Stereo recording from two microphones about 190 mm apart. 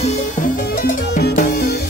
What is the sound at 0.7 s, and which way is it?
Music, 50° left (ahead or behind).